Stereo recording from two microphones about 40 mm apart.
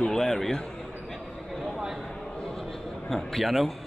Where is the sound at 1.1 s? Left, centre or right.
Centre.